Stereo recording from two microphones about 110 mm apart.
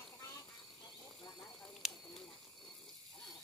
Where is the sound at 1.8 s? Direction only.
Centre (ahead or behind).